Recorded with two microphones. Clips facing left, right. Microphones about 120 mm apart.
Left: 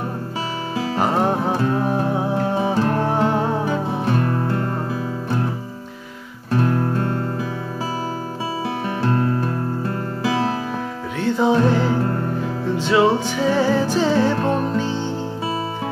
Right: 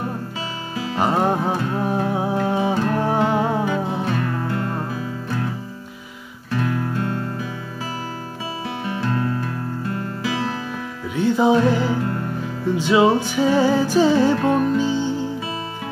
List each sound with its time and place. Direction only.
1.0 s music: centre (ahead or behind)
1.4 s music: 40° left (ahead or behind)
6.5 s music: 40° left (ahead or behind)
8.8 s music: 35° left (ahead or behind)
11.1 s music: 5° right (ahead or behind)
11.9 s music: 35° left (ahead or behind)
12.7 s music: 5° right (ahead or behind)
14.3 s music: 30° left (ahead or behind)
14.8 s music: 5° right (ahead or behind)